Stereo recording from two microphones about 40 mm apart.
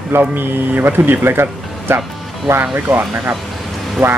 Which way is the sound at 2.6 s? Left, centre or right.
Right.